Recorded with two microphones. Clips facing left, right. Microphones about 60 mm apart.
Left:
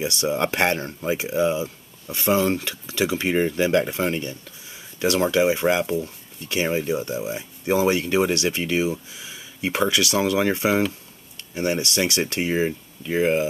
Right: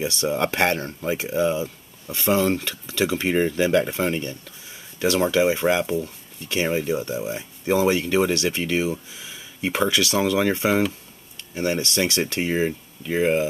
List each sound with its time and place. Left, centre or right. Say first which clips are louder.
0.0 s speech: even; centre